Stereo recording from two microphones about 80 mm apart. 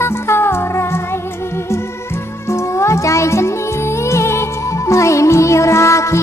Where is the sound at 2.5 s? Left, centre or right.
Left.